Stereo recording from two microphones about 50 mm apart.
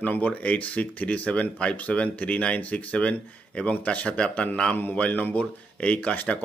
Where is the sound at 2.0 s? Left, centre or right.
Left; by 4.7 s centre.